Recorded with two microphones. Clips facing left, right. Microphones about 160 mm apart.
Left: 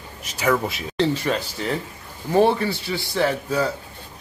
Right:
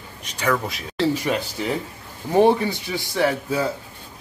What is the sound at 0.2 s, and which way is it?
A man's voice, 10° left (ahead or behind).